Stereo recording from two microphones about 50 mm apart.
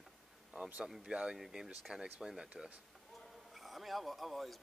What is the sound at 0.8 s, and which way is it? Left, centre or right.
Speech, centre.